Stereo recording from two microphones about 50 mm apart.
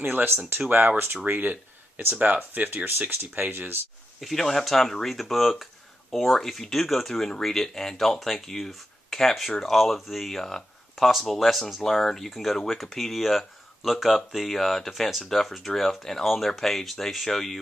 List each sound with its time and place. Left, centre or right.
0.0 s speech: right
4.2 s speech: centre